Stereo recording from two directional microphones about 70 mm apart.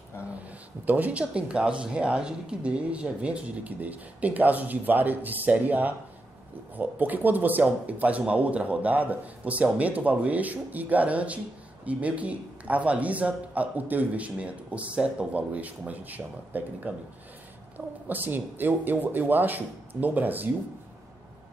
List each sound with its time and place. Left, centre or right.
0.3 s speech: right